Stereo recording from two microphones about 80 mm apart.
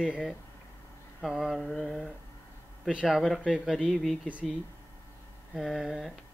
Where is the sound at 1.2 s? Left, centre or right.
Centre.